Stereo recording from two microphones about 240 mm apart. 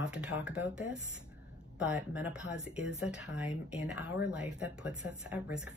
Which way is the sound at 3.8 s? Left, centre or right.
Left.